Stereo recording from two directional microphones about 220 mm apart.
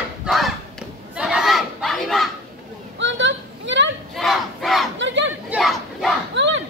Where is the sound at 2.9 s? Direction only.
55° right (ahead or behind).